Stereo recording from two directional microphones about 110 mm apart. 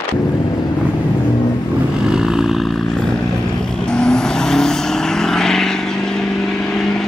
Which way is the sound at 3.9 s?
5° left (ahead or behind).